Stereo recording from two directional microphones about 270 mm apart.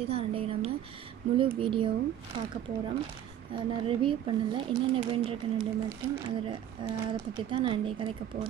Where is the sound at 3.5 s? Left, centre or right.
Centre.